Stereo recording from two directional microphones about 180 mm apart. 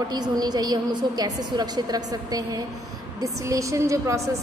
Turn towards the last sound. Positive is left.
turn(degrees=-15)  # may be behind; listen again after turning